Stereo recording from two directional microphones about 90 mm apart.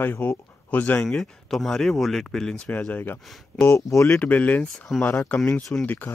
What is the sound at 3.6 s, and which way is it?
Speech, 35° left (ahead or behind).